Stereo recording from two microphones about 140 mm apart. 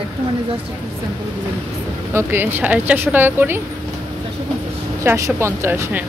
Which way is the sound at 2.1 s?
15° right (ahead or behind).